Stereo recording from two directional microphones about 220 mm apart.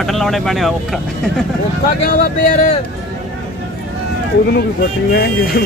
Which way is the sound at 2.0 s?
40° left (ahead or behind).